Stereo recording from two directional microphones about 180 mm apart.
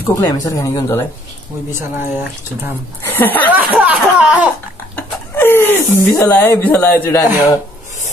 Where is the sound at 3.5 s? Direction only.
5° right (ahead or behind).